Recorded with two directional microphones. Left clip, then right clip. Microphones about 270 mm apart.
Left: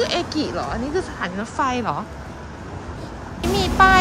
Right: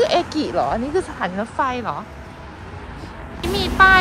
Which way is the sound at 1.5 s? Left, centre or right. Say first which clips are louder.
Left 1 dB; centre.